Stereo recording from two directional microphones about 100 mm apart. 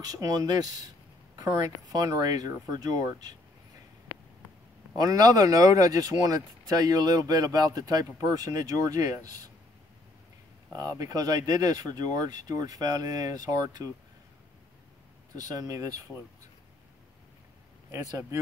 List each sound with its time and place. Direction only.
0.0 s speech: 40° right (ahead or behind)
4.9 s speech: 35° right (ahead or behind)
10.8 s speech: 35° right (ahead or behind)
15.3 s speech: 35° right (ahead or behind)
17.9 s speech: 30° right (ahead or behind)